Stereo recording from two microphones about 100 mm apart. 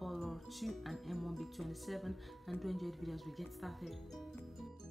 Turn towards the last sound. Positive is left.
turn(degrees=0)  # may be behind; listen again after turning